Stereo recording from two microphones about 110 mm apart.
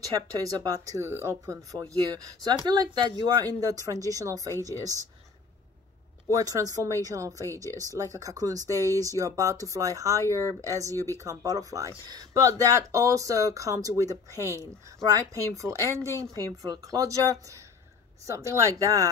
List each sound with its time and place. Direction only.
0.4 s speech: 35° right (ahead or behind)
1.0 s speech: 25° right (ahead or behind)
6.3 s speech: 30° right (ahead or behind)